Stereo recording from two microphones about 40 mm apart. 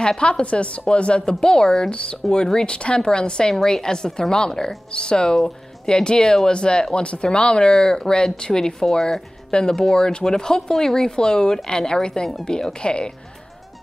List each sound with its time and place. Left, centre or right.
0.0 s speech: left
7.7 s speech: centre